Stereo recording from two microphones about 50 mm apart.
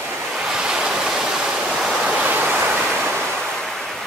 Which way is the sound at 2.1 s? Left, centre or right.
Right.